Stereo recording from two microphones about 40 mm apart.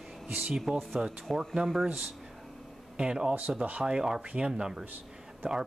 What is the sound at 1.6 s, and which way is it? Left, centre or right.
Speech, right.